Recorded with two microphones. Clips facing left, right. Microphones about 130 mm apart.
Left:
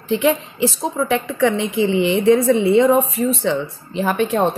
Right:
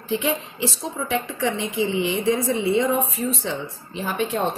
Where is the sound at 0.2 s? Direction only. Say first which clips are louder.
Left 7 dB; 70° left (ahead or behind).